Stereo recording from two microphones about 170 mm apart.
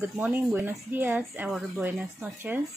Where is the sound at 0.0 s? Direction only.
10° right (ahead or behind).